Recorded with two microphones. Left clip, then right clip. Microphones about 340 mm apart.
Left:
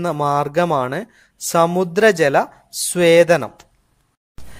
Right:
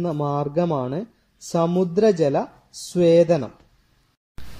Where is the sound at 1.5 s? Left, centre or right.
Left.